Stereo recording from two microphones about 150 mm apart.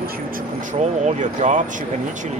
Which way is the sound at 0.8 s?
55° right (ahead or behind).